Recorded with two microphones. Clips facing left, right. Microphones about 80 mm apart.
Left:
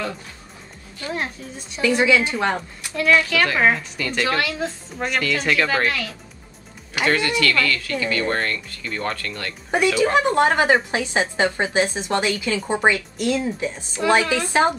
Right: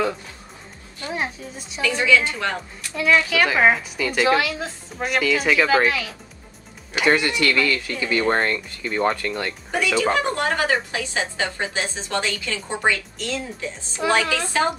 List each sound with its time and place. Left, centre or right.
1.1 s a woman's voice: centre
1.8 s speech: centre
3.0 s a woman's voice: centre
6.9 s speech: right
10.1 s speech: left
14.0 s a woman's voice: centre
14.5 s speech: left